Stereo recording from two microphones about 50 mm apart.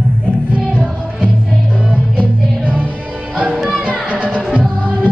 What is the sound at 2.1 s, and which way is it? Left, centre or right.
Music, left.